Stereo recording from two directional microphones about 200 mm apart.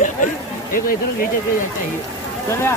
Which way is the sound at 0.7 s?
45° left (ahead or behind).